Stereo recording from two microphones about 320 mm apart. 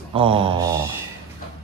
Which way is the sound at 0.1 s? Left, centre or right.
Centre.